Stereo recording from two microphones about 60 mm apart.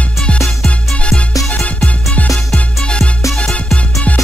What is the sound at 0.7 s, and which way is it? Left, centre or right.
Music, centre.